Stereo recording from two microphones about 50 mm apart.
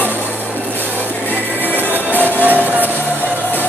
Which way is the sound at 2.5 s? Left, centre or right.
Right.